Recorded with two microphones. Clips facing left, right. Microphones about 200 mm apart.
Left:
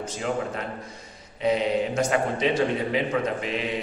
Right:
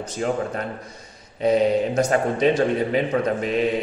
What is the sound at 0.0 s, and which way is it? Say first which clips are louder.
A man's voice: right 4 dB; 45° right (ahead or behind).